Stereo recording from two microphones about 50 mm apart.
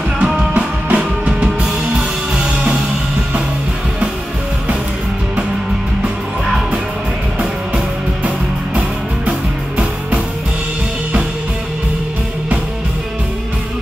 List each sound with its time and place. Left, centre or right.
0.2 s music: right